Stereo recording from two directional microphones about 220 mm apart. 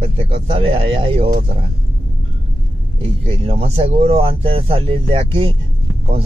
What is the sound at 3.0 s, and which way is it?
Speech, 25° right (ahead or behind).